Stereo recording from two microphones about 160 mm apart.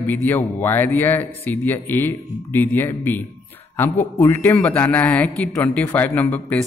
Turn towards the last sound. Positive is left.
turn(degrees=10)  # may be behind; listen again after turning